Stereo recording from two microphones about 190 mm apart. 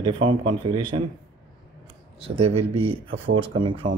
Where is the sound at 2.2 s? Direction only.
30° right (ahead or behind).